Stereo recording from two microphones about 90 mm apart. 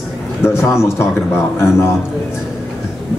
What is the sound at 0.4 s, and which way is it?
A man's voice, 30° left (ahead or behind).